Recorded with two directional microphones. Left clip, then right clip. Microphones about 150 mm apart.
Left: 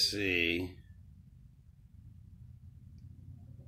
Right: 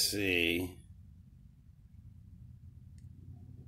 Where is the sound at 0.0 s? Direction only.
10° right (ahead or behind).